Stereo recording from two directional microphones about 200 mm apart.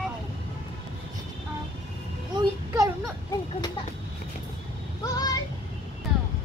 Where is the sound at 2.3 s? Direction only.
15° right (ahead or behind).